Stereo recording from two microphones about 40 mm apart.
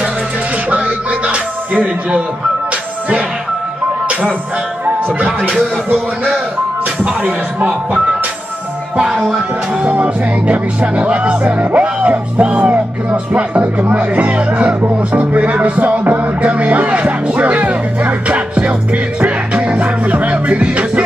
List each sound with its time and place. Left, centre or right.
0.7 s music: right
9.8 s speech: right
14.8 s music: right